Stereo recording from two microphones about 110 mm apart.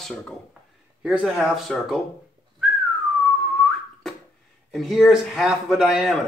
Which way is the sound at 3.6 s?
Centre (ahead or behind).